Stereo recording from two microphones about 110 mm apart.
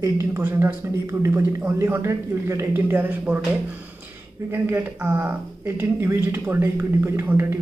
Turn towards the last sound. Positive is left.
turn(degrees=-20)  # may be behind; listen again after turning